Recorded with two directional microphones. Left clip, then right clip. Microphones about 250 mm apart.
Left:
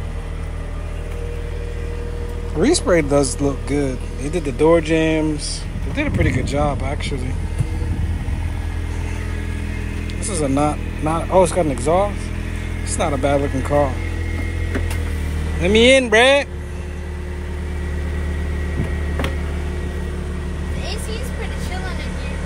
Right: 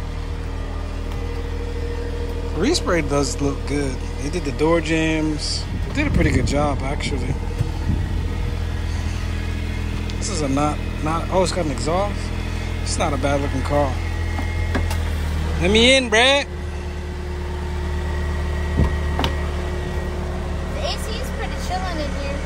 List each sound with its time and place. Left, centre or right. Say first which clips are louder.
2.6 s speech: left 4 dB; centre
10.2 s speech: left 3 dB; centre
15.6 s speech: left 2 dB; centre